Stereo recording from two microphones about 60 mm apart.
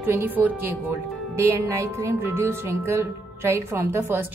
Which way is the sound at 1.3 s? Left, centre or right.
Right.